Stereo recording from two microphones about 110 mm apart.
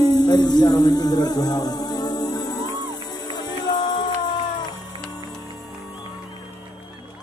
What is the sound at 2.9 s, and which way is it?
Music, 40° left (ahead or behind).